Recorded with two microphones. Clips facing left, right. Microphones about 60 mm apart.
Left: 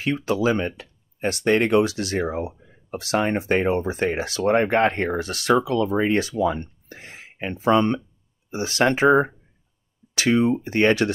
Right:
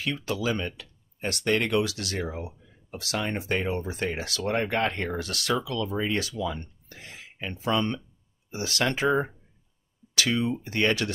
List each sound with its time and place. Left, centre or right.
0.0 s speech: left